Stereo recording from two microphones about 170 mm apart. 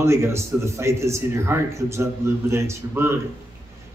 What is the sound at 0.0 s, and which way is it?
Speech, 15° right (ahead or behind).